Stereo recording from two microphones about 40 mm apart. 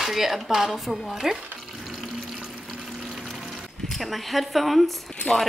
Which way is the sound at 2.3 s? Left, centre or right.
Right.